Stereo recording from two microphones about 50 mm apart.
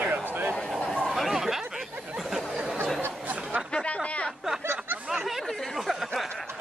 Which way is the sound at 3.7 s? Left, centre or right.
Centre.